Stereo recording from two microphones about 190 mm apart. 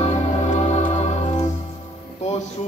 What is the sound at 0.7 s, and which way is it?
Music, 40° left (ahead or behind).